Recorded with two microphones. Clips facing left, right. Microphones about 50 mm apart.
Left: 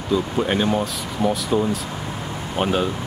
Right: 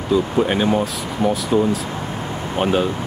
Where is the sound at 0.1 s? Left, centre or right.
Centre.